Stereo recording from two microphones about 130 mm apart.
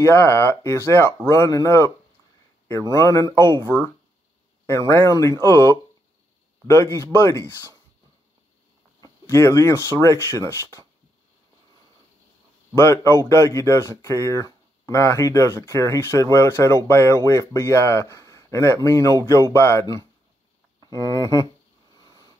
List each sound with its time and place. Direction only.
0.0 s speech: 20° left (ahead or behind)
2.9 s speech: 25° left (ahead or behind)
9.2 s speech: 20° left (ahead or behind)
12.7 s speech: 20° left (ahead or behind)
21.9 s a sound: 30° left (ahead or behind)